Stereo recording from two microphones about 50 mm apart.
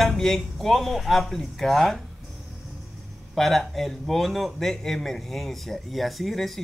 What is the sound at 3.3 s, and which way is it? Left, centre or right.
A man's voice, centre.